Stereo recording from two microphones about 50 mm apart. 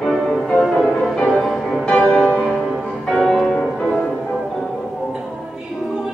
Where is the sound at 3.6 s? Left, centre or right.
Left.